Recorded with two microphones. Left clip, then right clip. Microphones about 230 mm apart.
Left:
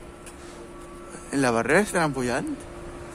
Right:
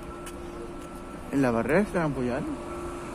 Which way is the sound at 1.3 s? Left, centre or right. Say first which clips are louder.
Left 3 dB; centre.